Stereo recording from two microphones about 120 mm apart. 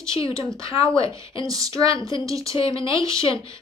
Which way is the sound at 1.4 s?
30° right (ahead or behind).